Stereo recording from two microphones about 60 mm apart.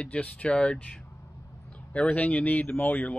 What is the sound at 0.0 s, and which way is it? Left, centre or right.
Speech, left.